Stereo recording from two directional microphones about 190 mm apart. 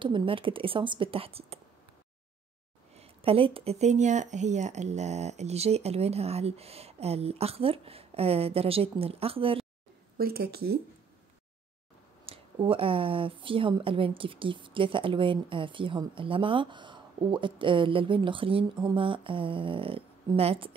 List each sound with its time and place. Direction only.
0.0 s a woman's voice: 25° right (ahead or behind)
3.0 s speech: 30° right (ahead or behind)
10.1 s speech: 50° right (ahead or behind)
12.3 s a woman's voice: 30° right (ahead or behind)